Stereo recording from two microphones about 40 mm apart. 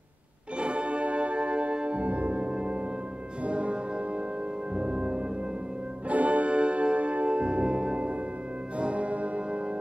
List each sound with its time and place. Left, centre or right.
0.6 s music: right
4.7 s music: right
6.0 s music: right
8.7 s church bell: right